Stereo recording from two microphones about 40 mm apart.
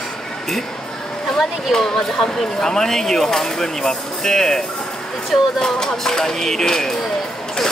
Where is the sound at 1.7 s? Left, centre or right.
Centre.